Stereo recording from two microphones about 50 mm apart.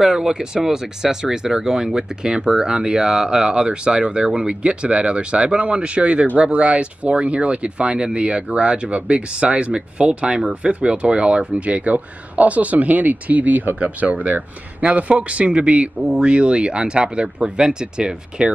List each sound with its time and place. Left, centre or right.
0.0 s speech: centre